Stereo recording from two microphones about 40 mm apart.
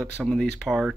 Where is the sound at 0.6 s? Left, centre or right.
Centre.